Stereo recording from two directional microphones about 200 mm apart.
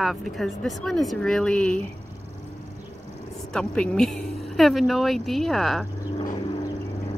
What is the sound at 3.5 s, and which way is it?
Speech, 5° left (ahead or behind).